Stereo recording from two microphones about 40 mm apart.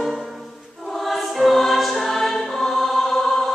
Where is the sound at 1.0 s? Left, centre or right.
Centre.